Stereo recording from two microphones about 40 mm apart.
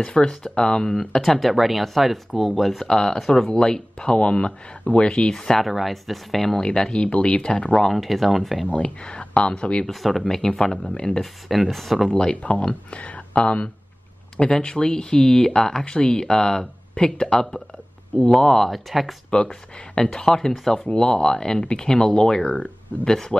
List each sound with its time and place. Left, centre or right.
0.0 s speech: left
0.3 s speech: centre
1.4 s speech: centre
3.0 s speech: centre
5.6 s speech: centre
6.5 s speech: centre
7.9 s speech: centre
8.7 s speech: left
9.8 s speech: centre
11.0 s speech: left
11.4 s speech: centre
12.1 s speech: left
18.7 s speech: centre
20.0 s speech: left